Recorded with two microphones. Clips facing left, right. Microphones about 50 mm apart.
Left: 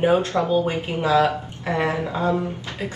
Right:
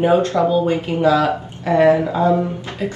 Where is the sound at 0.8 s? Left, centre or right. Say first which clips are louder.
Right 4 dB; left.